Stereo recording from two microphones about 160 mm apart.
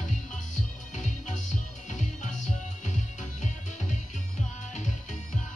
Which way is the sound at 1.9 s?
50° left (ahead or behind).